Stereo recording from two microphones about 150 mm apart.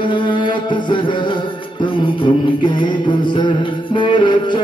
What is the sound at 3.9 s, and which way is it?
Music, 30° left (ahead or behind).